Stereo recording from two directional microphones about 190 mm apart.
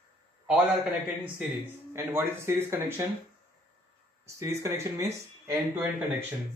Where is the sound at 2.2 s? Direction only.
15° right (ahead or behind).